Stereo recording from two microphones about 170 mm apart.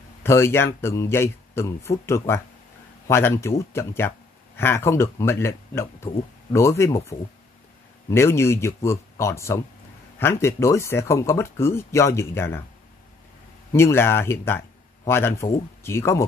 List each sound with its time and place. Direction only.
0.2 s speech: 15° left (ahead or behind)
13.7 s speech: 15° left (ahead or behind)